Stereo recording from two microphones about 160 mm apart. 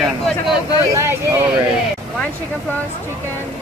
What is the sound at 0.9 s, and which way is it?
Speech, 15° right (ahead or behind).